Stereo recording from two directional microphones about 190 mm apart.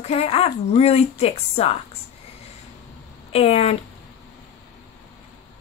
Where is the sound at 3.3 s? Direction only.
35° left (ahead or behind).